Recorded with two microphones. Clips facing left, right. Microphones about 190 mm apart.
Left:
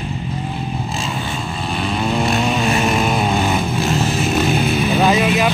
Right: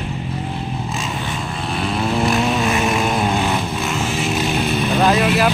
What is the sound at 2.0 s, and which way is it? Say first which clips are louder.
Vehicle: even; centre (ahead or behind).